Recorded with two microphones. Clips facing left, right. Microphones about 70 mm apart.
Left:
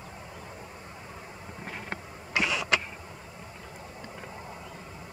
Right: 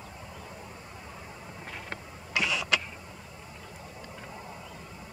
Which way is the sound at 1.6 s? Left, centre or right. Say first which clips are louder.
Left 3 dB; left.